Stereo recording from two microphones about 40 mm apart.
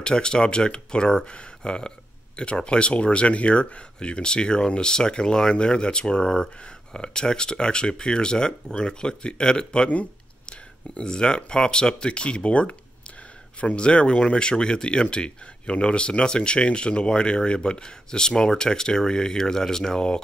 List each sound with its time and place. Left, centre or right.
0.0 s speech: left
11.0 s speech: left